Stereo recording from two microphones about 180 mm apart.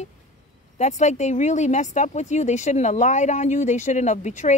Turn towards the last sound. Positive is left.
turn(degrees=40)  # may be behind; listen again after turning